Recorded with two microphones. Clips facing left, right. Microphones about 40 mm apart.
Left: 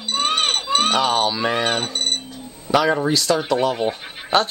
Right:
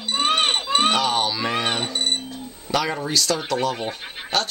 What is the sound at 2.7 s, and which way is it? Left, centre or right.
Speech, centre.